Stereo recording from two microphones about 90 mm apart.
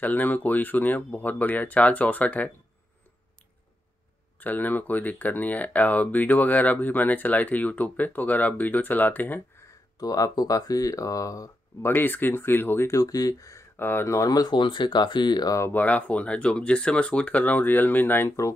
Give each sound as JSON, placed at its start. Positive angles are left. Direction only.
{"t": 0.0, "sound": "speech", "side_deg": 20}
{"t": 4.4, "sound": "speech", "side_deg": 20}
{"t": 9.9, "sound": "speech", "side_deg": 45}
{"t": 11.8, "sound": "speech", "side_deg": 25}
{"t": 13.0, "sound": "speech", "side_deg": 40}
{"t": 13.7, "sound": "speech", "side_deg": 25}
{"t": 14.1, "sound": "speech", "side_deg": 40}
{"t": 15.7, "sound": "speech", "side_deg": 20}